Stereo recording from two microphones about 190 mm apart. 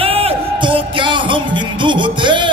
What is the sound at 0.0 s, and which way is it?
Music, 30° right (ahead or behind).